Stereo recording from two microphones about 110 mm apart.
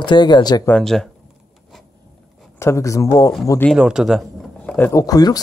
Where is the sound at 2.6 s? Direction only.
25° left (ahead or behind).